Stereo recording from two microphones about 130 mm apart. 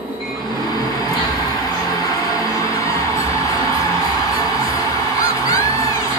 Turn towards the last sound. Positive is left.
turn(degrees=25)  # may be behind; listen again after turning